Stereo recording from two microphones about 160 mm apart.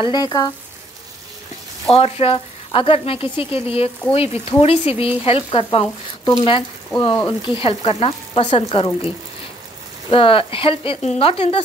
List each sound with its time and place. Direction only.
0.0 s speech: 25° left (ahead or behind)
1.9 s speech: 40° left (ahead or behind)
10.1 s speech: 35° left (ahead or behind)